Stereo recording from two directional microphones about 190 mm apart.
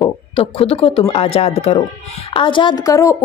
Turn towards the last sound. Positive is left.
turn(degrees=15)  # may be behind; listen again after turning